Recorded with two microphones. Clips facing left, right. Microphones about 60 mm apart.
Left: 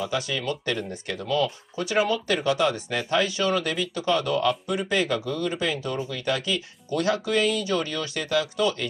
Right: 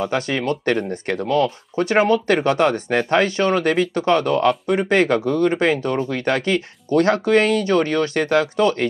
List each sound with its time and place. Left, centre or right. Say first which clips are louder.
0.0 s speech: right 6 dB; right